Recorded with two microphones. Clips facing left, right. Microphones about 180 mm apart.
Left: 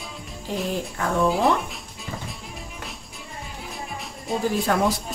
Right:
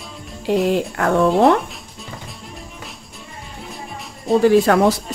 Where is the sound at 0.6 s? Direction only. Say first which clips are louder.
Right 8 dB; 75° right (ahead or behind).